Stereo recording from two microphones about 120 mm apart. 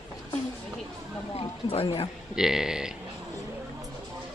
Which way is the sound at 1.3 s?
55° left (ahead or behind).